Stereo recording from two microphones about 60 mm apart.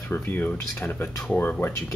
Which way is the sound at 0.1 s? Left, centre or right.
Left.